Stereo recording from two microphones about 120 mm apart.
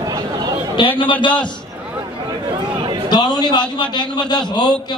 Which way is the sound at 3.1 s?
35° left (ahead or behind).